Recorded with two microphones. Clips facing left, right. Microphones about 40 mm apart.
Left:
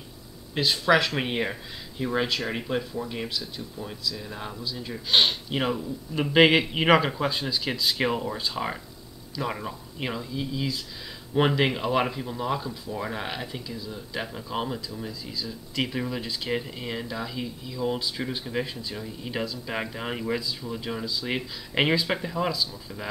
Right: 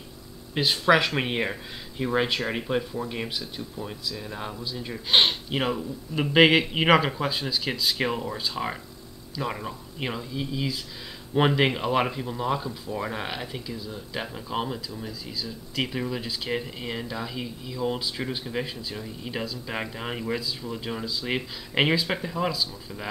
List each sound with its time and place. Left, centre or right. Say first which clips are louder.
0.6 s speech: right 1 dB; centre
4.0 s speech: left 2 dB; centre